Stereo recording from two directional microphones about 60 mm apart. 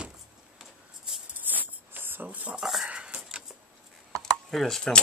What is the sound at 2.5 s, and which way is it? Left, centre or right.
Dog, centre.